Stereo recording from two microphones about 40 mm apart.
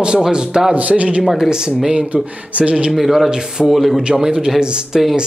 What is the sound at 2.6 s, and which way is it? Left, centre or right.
Speech, right.